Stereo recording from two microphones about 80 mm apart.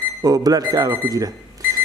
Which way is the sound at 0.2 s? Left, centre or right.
Right.